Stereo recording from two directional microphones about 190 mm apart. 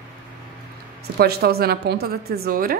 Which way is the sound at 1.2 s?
55° right (ahead or behind).